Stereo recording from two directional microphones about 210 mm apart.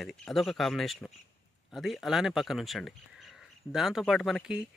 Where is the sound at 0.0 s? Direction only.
Centre (ahead or behind).